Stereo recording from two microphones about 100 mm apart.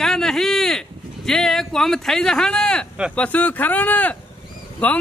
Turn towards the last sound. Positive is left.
turn(degrees=15)  # may be behind; listen again after turning